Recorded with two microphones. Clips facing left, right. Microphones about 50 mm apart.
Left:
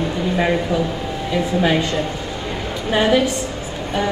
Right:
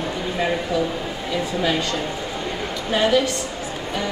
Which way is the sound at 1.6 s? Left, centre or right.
Left.